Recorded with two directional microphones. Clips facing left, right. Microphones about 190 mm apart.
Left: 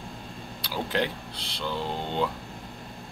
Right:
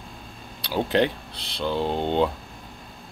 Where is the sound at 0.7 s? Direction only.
20° right (ahead or behind).